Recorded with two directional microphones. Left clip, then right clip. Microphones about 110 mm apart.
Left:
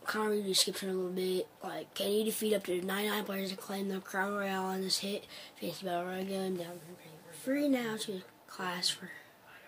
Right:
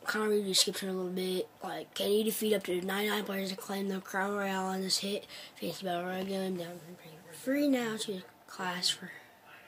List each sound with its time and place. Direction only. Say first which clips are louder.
0.0 s speech: right 2 dB; 20° right (ahead or behind)